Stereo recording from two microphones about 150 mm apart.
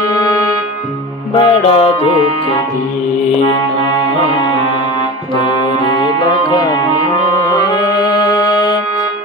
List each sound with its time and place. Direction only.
0.1 s music: 25° left (ahead or behind)
1.3 s music: 35° left (ahead or behind)
5.9 s music: 30° left (ahead or behind)